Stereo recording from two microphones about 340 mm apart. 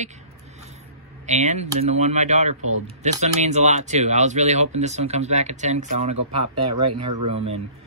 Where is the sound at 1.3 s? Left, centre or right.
Centre.